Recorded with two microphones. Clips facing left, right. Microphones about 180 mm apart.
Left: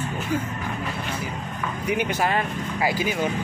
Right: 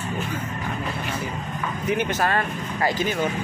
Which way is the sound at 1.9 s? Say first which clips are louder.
Even; 15° left (ahead or behind).